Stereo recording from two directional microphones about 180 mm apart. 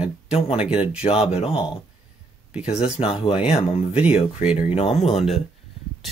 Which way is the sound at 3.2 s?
35° left (ahead or behind).